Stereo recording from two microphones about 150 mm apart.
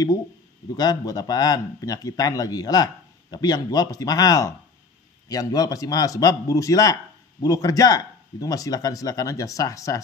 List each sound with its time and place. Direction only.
0.7 s speech: 25° left (ahead or behind)